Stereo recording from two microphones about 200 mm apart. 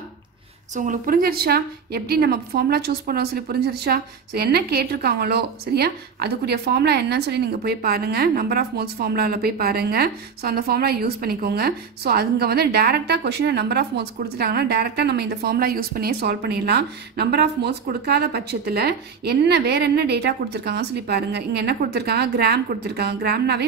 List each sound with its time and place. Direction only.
0.7 s a woman's voice: 40° right (ahead or behind)